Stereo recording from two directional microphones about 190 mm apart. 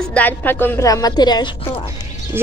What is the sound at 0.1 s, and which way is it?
A woman's voice, 10° left (ahead or behind).